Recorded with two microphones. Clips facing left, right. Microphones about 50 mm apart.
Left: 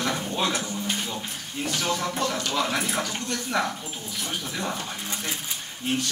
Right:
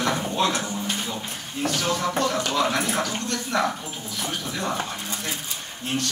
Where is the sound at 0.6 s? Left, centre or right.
Centre.